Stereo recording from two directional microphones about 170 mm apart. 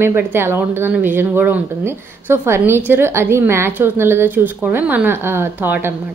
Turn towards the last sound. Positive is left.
turn(degrees=-10)  # may be behind; listen again after turning